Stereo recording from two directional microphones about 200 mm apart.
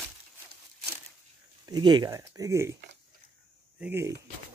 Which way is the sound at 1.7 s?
20° right (ahead or behind).